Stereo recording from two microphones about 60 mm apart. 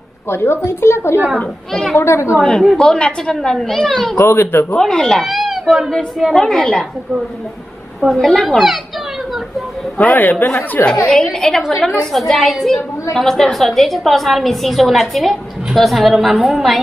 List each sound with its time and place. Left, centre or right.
0.3 s a woman's voice: left
2.6 s a woman's voice: centre
2.9 s a woman's voice: centre
4.2 s speech: left
4.7 s a woman's voice: centre
5.2 s a woman's voice: centre
8.0 s a woman's voice: centre
9.9 s a man's voice: left
10.8 s a woman's voice: left
11.3 s a woman's voice: centre